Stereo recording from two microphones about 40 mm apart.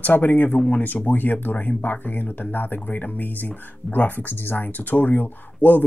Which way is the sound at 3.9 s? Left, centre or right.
Left.